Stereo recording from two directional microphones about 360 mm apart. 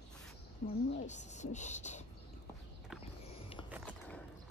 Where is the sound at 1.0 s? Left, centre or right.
Centre.